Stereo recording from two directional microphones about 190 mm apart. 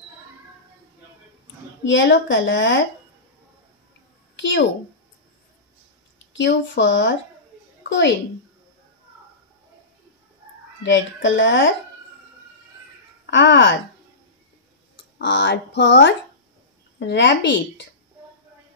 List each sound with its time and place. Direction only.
1.9 s speech: 70° left (ahead or behind)
4.4 s a child's voice: 75° left (ahead or behind)
6.3 s speech: 70° left (ahead or behind)
10.8 s speech: 75° left (ahead or behind)
13.3 s speech: 75° left (ahead or behind)
15.1 s speech: 70° left (ahead or behind)